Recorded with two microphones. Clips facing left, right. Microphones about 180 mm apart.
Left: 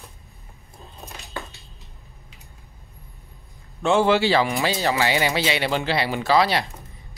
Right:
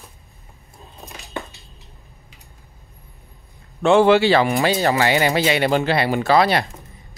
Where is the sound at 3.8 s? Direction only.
60° right (ahead or behind).